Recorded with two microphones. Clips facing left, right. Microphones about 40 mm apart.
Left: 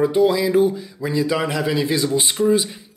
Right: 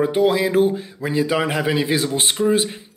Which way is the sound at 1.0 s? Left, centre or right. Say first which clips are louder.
Right 1 dB; right.